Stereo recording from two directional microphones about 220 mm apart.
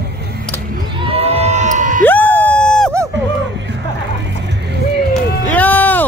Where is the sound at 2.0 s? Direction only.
10° left (ahead or behind).